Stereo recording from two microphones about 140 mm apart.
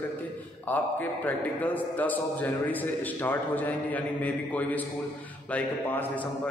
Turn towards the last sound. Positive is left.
turn(degrees=10)  # may be behind; listen again after turning